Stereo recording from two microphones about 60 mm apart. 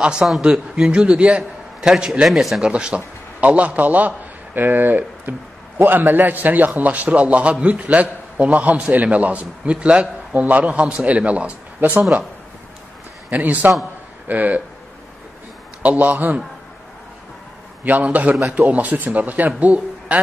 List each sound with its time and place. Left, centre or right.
0.0 s a man's voice: centre
2.6 s a man's voice: centre
13.3 s a man's voice: right
15.8 s a man's voice: right
17.8 s a man's voice: right